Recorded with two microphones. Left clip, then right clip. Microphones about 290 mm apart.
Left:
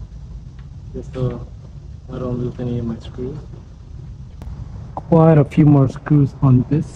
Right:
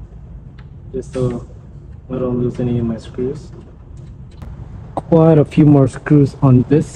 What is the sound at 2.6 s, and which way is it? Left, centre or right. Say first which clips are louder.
Speech: right 6 dB; centre.